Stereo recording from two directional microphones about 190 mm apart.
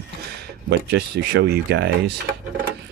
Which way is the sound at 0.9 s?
60° right (ahead or behind).